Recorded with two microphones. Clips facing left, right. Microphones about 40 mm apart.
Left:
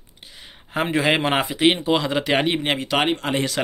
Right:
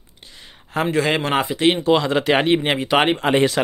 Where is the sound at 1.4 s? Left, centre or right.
Centre.